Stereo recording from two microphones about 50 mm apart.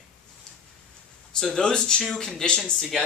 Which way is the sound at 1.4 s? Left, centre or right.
Centre.